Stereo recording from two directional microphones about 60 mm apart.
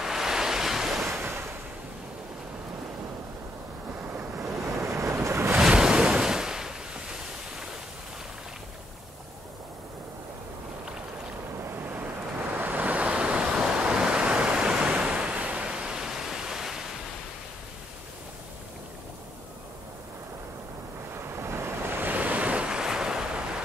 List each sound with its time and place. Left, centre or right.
0.0 s waves: centre
1.2 s waves: right
3.9 s waves: right
4.5 s waves: right
5.7 s waves: centre
11.5 s boat: right
12.5 s waves: right; by 16.8 s centre
21.1 s waves: right
22.0 s waves: right